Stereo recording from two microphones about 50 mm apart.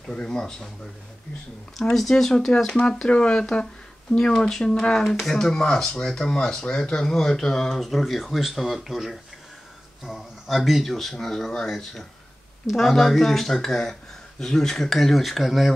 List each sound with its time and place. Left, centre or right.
0.1 s speech: centre
2.0 s speech: centre